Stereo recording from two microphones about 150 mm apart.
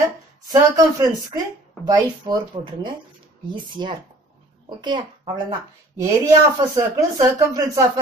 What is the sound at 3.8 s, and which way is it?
A child's voice, 30° right (ahead or behind).